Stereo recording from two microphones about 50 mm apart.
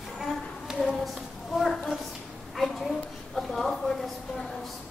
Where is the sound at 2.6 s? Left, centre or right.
Centre.